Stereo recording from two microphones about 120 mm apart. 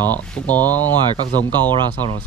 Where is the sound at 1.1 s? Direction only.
65° left (ahead or behind).